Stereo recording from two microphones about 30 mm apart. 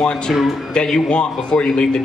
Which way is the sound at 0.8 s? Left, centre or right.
Left.